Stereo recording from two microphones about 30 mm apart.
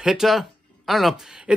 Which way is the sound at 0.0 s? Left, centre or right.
Centre.